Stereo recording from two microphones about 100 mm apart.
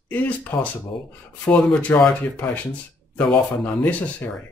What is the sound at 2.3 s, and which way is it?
Speech, 20° left (ahead or behind).